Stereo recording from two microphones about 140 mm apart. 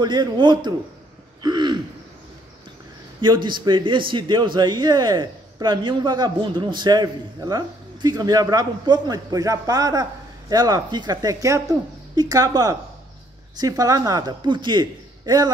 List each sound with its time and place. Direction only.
0.0 s a man's voice: 30° right (ahead or behind)
1.4 s throat clearing: 30° right (ahead or behind)
3.2 s a man's voice: 35° right (ahead or behind)